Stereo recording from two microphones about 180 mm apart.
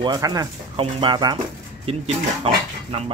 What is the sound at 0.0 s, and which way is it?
Speech, 20° right (ahead or behind).